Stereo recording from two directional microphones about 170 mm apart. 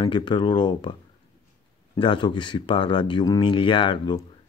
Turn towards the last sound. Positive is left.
turn(degrees=30)  # may be behind; listen again after turning